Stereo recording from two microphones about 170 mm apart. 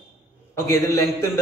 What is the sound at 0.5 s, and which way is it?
Speech, 20° left (ahead or behind).